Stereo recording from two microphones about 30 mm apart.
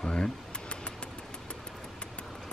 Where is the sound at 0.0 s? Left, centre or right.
Left.